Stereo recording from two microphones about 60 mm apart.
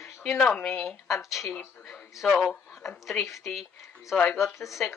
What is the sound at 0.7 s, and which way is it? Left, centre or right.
Speech, centre.